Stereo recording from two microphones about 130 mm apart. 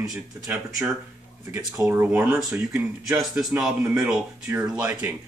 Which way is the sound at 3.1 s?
5° right (ahead or behind).